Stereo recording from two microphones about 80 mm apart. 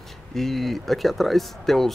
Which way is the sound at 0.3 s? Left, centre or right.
Centre.